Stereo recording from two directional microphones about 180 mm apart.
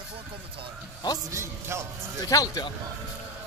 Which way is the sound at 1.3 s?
15° right (ahead or behind).